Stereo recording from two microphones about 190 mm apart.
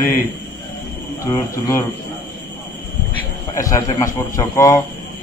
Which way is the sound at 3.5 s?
15° left (ahead or behind).